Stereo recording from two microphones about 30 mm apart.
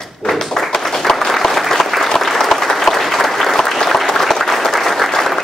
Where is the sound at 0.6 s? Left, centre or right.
Centre.